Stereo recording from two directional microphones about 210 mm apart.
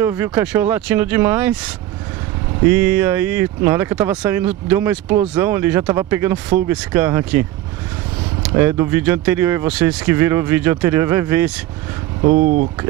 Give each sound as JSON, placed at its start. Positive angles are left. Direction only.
{"t": 0.0, "sound": "speech", "side_deg": -10}
{"t": 2.6, "sound": "speech", "side_deg": -10}
{"t": 12.2, "sound": "speech", "side_deg": -40}